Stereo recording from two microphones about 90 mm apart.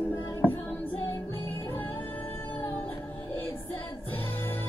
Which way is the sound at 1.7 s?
20° left (ahead or behind).